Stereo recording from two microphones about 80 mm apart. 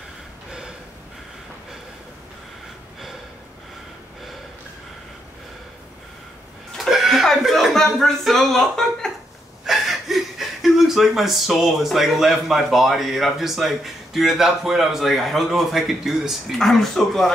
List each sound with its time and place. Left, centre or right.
0.5 s gasp: centre
6.8 s chuckle: centre
9.7 s speech: centre